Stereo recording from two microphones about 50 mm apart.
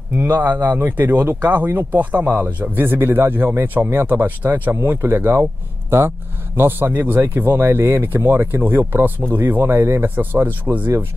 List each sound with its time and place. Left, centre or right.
0.3 s speech: right
5.0 s speech: right